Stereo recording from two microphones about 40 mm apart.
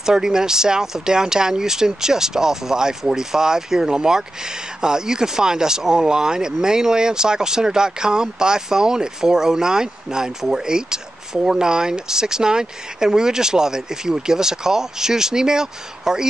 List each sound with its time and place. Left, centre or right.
0.0 s speech: centre